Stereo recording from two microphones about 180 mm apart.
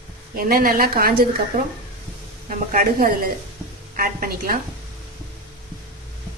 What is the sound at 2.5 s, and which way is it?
A woman's voice, 50° right (ahead or behind).